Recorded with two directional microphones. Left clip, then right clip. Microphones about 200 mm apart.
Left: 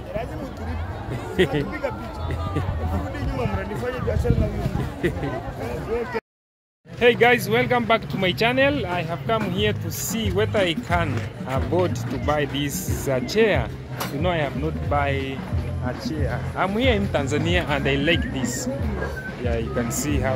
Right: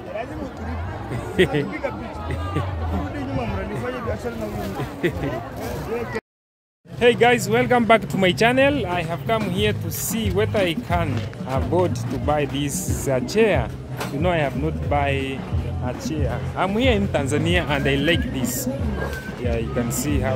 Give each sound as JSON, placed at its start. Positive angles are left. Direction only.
{"t": 1.3, "sound": "speech", "side_deg": 0}
{"t": 7.0, "sound": "speech", "side_deg": -5}
{"t": 7.7, "sound": "speech", "side_deg": -30}
{"t": 8.5, "sound": "speech", "side_deg": -5}
{"t": 20.1, "sound": "speech", "side_deg": 0}